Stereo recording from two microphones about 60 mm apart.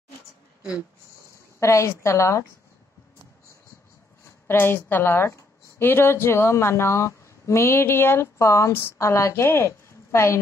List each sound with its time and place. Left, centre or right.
1.6 s a woman's voice: left
4.5 s a woman's voice: left